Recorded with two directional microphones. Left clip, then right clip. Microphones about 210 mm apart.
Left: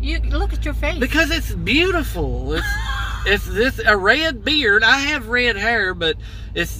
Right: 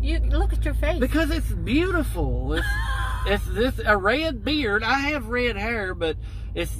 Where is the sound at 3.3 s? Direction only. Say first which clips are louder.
Left 7 dB; 5° left (ahead or behind).